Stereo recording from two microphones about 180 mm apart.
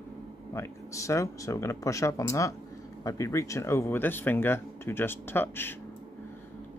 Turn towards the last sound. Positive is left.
turn(degrees=10)  # may be behind; listen again after turning